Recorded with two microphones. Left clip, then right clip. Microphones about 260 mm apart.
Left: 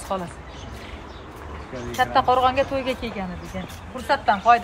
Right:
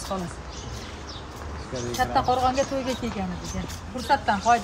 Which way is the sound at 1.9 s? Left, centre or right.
Centre.